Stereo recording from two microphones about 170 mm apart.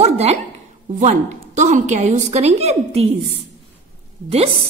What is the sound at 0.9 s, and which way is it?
A woman's voice, 45° right (ahead or behind).